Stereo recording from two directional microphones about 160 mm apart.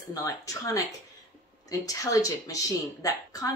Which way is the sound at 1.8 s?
20° left (ahead or behind).